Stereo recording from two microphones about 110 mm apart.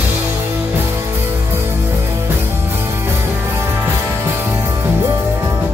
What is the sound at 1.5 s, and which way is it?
Music, 20° right (ahead or behind).